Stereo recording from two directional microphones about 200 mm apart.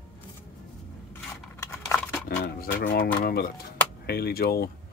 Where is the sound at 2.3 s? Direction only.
50° left (ahead or behind).